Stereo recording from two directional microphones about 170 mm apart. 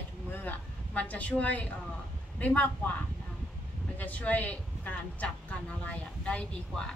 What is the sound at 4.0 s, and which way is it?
Speech, 10° left (ahead or behind).